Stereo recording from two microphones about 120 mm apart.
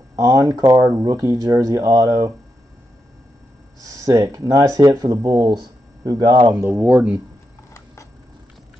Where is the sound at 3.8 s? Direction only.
25° right (ahead or behind).